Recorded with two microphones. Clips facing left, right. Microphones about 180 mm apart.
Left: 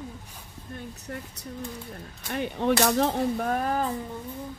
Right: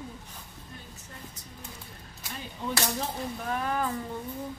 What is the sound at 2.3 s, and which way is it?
Speech, 65° left (ahead or behind).